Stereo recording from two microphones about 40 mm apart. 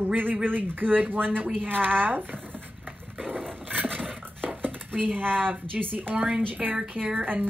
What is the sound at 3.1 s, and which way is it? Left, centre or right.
Roaring cats, right.